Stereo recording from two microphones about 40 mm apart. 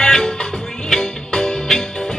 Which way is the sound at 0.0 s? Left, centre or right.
Centre.